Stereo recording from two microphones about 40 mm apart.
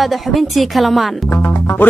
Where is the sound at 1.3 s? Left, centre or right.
Left.